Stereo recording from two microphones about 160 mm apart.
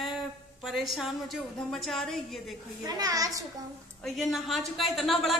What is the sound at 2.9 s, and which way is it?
Speech, 25° right (ahead or behind).